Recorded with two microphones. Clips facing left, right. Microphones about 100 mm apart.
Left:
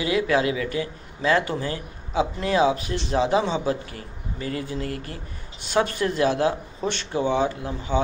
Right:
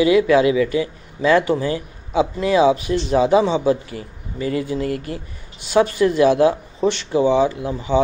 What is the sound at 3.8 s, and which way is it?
Speech, 40° left (ahead or behind).